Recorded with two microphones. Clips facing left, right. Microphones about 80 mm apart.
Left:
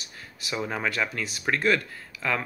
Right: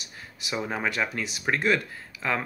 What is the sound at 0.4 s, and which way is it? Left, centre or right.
Speech, centre.